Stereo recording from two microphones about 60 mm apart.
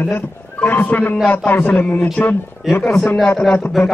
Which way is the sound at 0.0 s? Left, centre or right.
Left.